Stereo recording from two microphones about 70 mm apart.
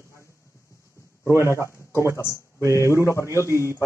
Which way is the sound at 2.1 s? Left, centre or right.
Left.